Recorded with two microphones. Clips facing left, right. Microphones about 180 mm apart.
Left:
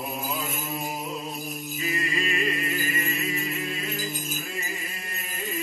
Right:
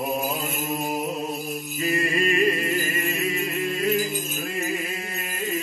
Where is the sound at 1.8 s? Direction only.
50° right (ahead or behind).